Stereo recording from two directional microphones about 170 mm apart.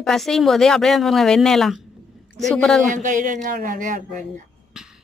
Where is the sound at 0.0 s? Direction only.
Centre (ahead or behind).